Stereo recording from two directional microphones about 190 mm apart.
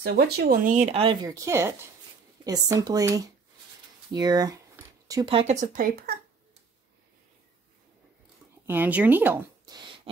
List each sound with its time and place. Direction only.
0.0 s speech: 60° right (ahead or behind)
0.7 s speech: 35° right (ahead or behind); by 4.6 s 20° right (ahead or behind)
5.0 s a sound: 20° right (ahead or behind)
5.3 s speech: 35° right (ahead or behind)
8.6 s speech: 10° right (ahead or behind)